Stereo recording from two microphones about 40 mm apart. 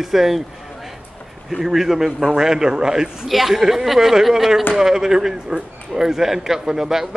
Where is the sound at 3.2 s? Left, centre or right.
Centre.